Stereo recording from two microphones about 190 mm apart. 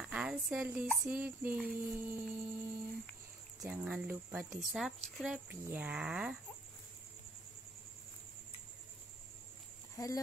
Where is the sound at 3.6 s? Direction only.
5° right (ahead or behind).